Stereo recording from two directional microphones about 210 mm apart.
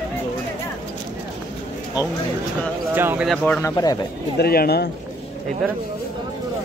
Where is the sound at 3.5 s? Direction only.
15° left (ahead or behind).